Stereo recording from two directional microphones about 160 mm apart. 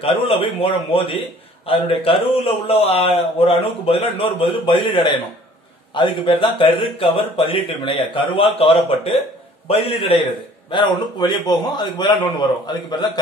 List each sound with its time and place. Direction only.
0.0 s a man's voice: 35° left (ahead or behind)
6.2 s a man's voice: 35° left (ahead or behind)